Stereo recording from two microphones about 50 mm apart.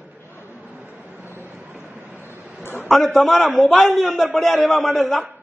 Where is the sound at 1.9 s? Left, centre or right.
Right.